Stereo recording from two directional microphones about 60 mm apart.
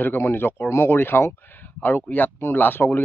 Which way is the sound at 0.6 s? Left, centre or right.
Left.